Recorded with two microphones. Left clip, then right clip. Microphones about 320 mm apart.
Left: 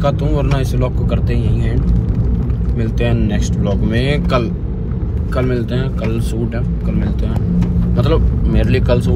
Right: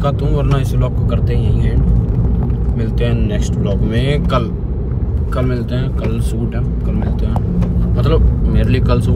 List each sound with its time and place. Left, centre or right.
0.0 s speech: centre
3.0 s speech: centre
7.9 s speech: centre